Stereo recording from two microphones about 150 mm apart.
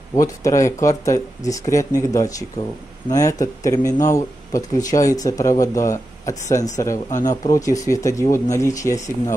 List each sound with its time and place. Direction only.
0.1 s speech: 20° left (ahead or behind)